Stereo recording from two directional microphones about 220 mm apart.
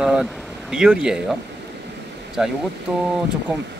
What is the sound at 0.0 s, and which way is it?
Speech, 5° right (ahead or behind).